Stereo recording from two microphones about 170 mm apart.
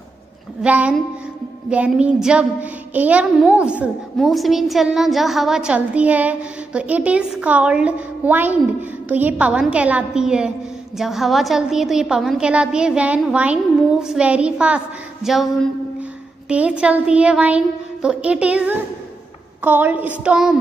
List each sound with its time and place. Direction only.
0.6 s a woman's voice: 10° right (ahead or behind)